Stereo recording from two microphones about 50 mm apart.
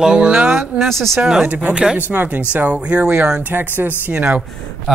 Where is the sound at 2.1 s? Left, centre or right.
Right.